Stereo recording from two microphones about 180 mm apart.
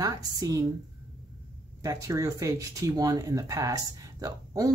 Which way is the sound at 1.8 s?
15° right (ahead or behind).